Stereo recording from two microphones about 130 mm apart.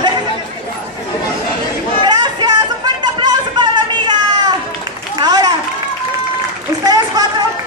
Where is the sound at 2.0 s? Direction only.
35° right (ahead or behind).